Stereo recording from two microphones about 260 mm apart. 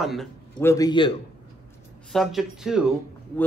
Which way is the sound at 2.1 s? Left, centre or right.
Centre.